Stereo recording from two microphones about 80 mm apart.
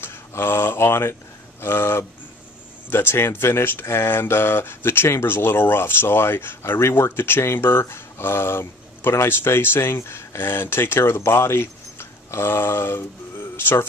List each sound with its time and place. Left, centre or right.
0.0 s speech: left